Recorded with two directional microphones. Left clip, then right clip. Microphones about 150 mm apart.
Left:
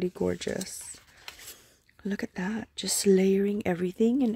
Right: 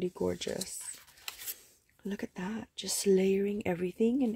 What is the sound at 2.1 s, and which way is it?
Speech, 25° left (ahead or behind).